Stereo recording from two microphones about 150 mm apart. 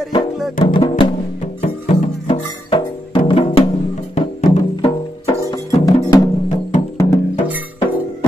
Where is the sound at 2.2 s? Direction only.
35° left (ahead or behind).